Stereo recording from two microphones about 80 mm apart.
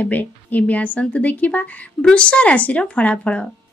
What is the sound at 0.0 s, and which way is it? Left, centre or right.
A woman's voice, left.